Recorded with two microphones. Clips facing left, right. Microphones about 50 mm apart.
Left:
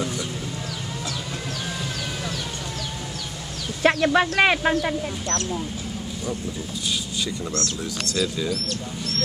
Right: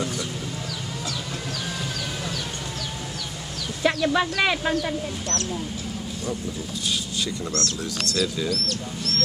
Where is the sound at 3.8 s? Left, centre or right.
Left.